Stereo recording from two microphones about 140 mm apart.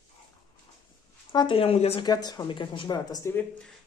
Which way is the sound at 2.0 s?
30° left (ahead or behind).